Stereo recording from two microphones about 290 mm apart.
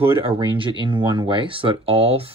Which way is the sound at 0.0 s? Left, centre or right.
Centre.